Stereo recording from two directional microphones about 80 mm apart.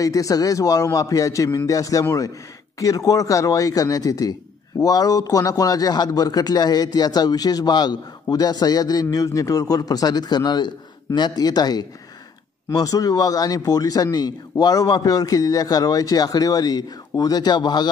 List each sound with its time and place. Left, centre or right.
0.0 s a man's voice: left
12.7 s a man's voice: left